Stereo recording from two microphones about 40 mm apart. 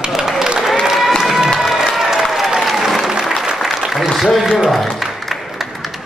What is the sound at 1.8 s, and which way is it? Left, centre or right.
Applause, centre.